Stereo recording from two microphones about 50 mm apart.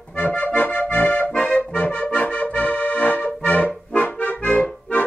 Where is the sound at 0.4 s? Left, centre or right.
Left.